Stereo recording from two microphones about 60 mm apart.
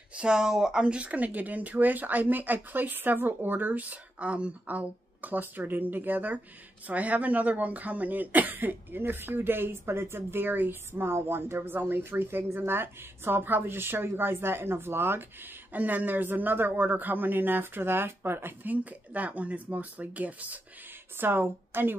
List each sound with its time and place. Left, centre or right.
0.1 s speech: centre; by 15.2 s right
15.7 s speech: right
21.2 s speech: right